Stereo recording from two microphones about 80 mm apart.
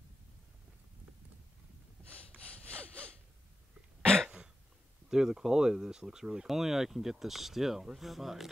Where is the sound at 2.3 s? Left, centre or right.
Centre.